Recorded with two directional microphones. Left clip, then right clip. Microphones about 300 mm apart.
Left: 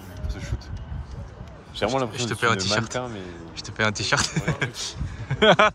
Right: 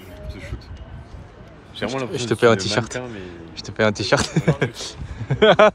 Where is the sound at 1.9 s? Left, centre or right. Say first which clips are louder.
Right 2 dB; centre.